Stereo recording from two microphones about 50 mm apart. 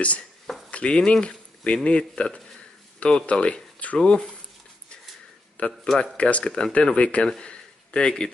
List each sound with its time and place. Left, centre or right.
0.7 s speech: left
5.6 s speech: left